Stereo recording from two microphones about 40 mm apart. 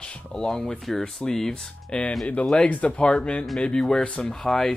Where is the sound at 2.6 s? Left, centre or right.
Left.